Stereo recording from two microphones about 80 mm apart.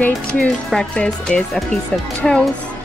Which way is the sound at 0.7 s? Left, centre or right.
Centre.